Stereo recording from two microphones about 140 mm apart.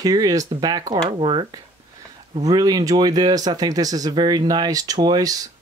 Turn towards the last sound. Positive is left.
turn(degrees=-25)  # may be behind; listen again after turning